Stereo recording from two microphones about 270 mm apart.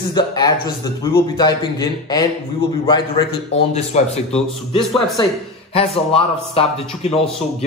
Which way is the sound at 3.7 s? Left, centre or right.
Left.